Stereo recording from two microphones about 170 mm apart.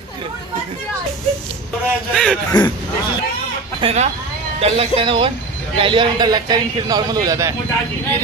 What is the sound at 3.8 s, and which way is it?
A man's voice, 40° right (ahead or behind).